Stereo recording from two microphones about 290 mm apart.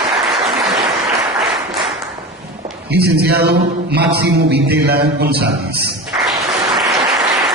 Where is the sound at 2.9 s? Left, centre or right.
Right.